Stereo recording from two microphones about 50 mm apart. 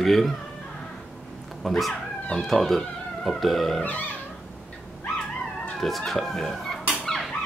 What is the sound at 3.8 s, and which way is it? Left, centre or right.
Cat, left.